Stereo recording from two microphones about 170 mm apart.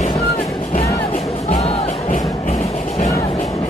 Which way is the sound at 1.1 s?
50° left (ahead or behind).